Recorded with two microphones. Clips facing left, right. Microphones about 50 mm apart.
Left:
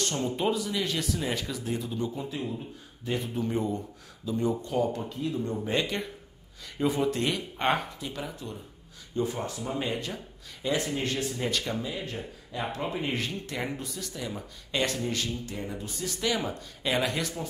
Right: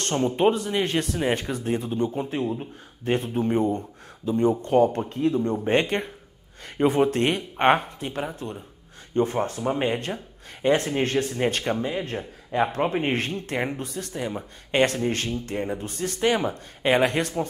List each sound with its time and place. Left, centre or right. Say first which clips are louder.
0.1 s speech: right 12 dB; right
4.3 s speech: right 8 dB; right